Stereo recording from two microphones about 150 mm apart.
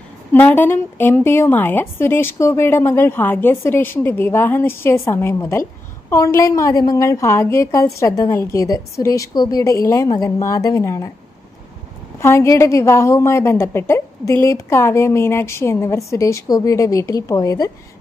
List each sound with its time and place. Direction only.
0.3 s a woman's voice: 10° left (ahead or behind)
12.2 s a woman's voice: 15° left (ahead or behind)